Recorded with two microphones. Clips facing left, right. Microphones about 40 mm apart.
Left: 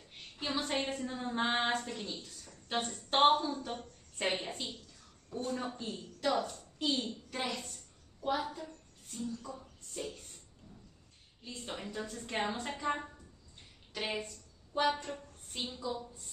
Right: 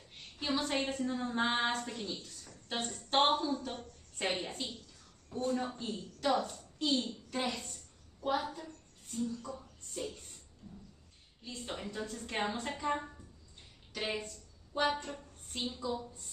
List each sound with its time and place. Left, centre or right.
0.4 s a woman's voice: centre
10.6 s a sound: centre
11.4 s a woman's voice: centre